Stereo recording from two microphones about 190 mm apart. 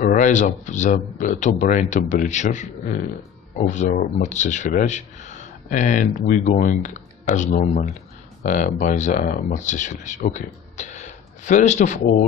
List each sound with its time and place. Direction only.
0.0 s speech: 45° left (ahead or behind)